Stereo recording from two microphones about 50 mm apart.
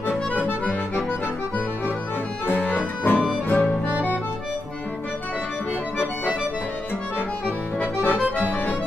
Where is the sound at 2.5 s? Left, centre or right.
Left.